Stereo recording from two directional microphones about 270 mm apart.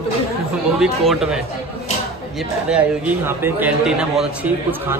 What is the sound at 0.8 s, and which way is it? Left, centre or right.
A man's voice, centre.